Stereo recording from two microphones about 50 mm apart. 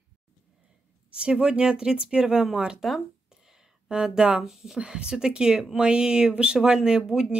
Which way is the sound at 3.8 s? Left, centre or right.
Centre.